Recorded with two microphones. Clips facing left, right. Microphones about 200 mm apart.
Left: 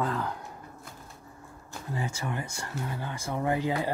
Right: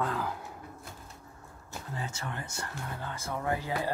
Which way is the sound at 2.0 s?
10° left (ahead or behind).